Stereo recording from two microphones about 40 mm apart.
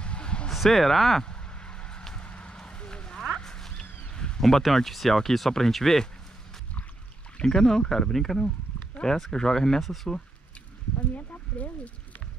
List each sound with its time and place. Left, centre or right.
0.0 s a sound: left
0.5 s speech: centre
1.2 s a sound: left
4.4 s speech: centre
7.4 s speech: centre
8.1 s speech: centre
11.0 s speech: left